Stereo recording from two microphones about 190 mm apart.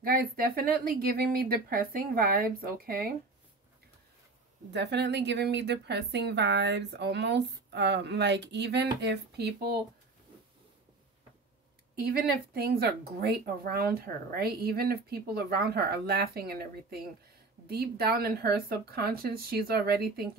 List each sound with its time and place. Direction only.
0.0 s speech: 50° right (ahead or behind)
4.7 s speech: 65° right (ahead or behind)
12.5 s speech: 55° right (ahead or behind)